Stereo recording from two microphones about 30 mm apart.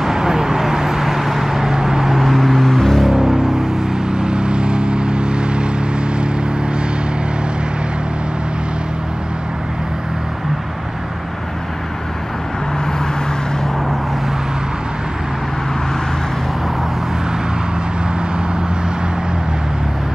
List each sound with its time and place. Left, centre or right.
0.0 s vehicle: centre
2.1 s vehicle: centre
3.1 s music: centre
4.1 s vehicle: right